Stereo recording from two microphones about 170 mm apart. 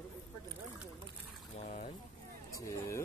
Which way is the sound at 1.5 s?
40° left (ahead or behind).